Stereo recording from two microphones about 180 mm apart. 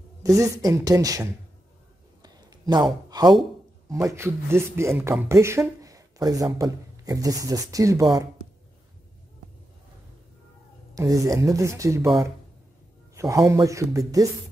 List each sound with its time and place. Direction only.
0.2 s speech: 20° right (ahead or behind)
2.2 s a sound: 25° right (ahead or behind)
3.9 s speech: 15° right (ahead or behind)
11.0 s speech: 20° right (ahead or behind)
13.1 s speech: 15° right (ahead or behind)